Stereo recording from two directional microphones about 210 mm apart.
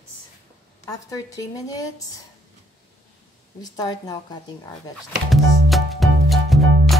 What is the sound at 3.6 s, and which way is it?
Speech, 20° left (ahead or behind).